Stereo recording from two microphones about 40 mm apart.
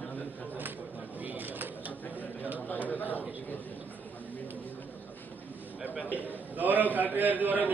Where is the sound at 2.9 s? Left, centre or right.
Left.